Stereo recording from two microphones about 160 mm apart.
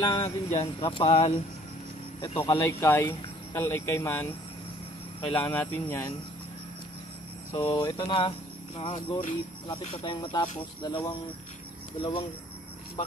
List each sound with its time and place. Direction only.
0.0 s speech: 25° left (ahead or behind)
5.4 s speech: 10° left (ahead or behind)
7.5 s speech: 30° left (ahead or behind)
12.0 s speech: 35° left (ahead or behind)